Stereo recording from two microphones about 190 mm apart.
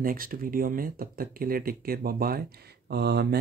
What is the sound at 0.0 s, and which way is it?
Speech, 50° right (ahead or behind).